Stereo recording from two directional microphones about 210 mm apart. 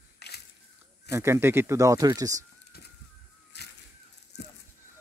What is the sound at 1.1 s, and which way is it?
Speech, 15° right (ahead or behind).